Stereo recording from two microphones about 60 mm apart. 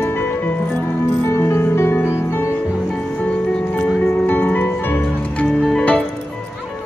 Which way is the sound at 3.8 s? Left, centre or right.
Left.